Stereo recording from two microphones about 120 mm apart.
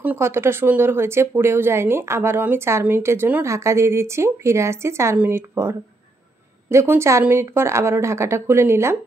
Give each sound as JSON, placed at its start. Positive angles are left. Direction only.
{"t": 0.0, "sound": "speech", "side_deg": -20}